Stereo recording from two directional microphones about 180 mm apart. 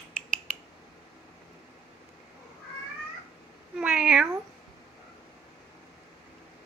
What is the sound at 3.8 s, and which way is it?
Cat, 5° right (ahead or behind).